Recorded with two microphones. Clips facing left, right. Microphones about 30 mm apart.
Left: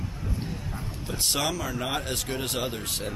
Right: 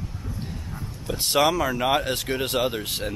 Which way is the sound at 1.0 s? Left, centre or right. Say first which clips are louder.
Right 7 dB; centre.